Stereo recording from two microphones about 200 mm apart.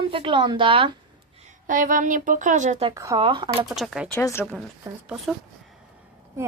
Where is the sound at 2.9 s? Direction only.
15° right (ahead or behind).